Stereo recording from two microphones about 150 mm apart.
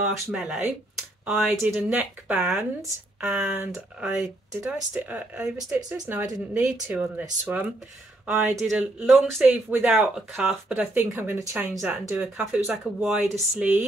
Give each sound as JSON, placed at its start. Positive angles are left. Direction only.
{"t": 0.0, "sound": "speech", "side_deg": -5}
{"t": 9.4, "sound": "speech", "side_deg": -10}